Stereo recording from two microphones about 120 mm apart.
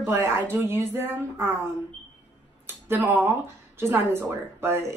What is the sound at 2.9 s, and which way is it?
A woman's voice, 20° right (ahead or behind).